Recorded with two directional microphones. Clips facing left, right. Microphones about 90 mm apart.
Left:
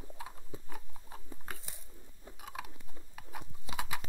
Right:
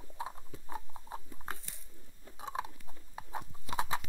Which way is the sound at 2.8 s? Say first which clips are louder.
Right 4 dB; 30° right (ahead or behind).